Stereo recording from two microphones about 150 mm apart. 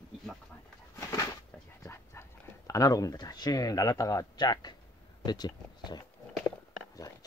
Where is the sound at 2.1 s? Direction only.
20° left (ahead or behind).